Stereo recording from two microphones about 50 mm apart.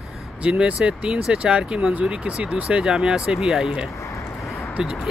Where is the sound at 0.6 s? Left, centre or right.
Centre.